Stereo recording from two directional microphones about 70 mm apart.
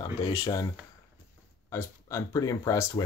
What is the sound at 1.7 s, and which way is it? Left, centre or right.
Speech, left.